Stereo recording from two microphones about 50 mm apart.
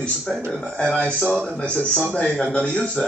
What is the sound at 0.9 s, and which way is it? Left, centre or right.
Speech, left.